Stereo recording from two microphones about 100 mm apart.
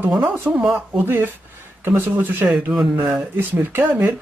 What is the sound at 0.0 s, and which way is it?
A man's voice, 20° right (ahead or behind).